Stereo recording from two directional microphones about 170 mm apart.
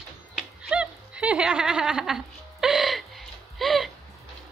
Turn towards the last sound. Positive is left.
turn(degrees=0)  # may be behind; listen again after turning